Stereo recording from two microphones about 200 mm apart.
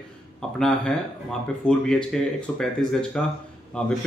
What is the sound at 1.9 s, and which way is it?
Speech, 5° left (ahead or behind).